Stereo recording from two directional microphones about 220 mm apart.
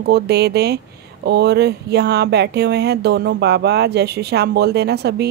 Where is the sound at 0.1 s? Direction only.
50° right (ahead or behind).